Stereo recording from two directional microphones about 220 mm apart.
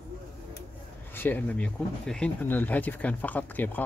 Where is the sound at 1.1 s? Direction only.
10° left (ahead or behind).